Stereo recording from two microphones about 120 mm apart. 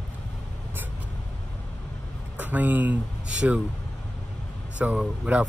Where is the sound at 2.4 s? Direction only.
15° right (ahead or behind).